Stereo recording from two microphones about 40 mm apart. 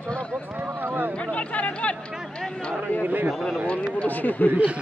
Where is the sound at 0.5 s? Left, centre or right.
Right.